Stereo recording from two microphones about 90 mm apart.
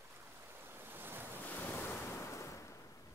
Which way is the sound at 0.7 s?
25° right (ahead or behind).